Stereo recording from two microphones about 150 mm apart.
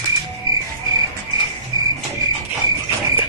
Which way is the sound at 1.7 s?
25° right (ahead or behind).